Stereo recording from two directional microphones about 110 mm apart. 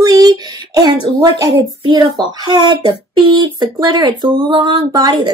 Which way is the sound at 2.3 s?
40° right (ahead or behind).